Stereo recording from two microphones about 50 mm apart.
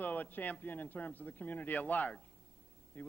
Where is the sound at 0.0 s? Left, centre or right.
Left.